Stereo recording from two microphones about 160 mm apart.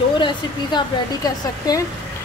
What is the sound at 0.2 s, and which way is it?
Speech, 30° left (ahead or behind).